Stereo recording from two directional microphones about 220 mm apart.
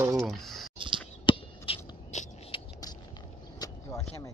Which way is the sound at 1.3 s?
20° left (ahead or behind).